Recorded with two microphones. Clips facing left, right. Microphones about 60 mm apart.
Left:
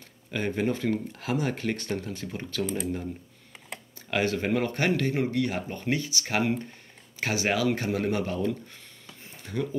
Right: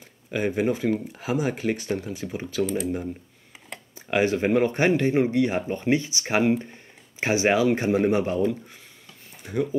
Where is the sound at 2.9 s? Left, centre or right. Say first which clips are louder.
Right 4 dB; centre.